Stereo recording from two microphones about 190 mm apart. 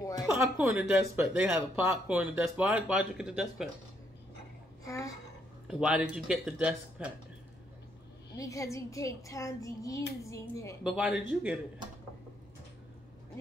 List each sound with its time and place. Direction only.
0.0 s a sound: 20° left (ahead or behind)
0.3 s speech: 5° right (ahead or behind)
4.8 s a woman's voice: 15° left (ahead or behind)
5.7 s speech: 5° right (ahead or behind)
8.4 s speech: 15° left (ahead or behind)
10.8 s speech: 5° right (ahead or behind)